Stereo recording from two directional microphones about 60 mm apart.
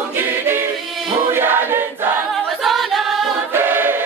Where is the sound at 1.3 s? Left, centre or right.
Right.